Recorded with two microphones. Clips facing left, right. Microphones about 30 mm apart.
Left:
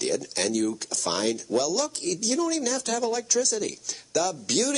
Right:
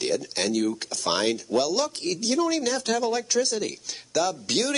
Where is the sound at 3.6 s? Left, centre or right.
Centre.